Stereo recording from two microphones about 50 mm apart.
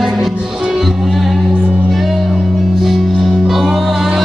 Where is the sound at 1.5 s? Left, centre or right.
Right.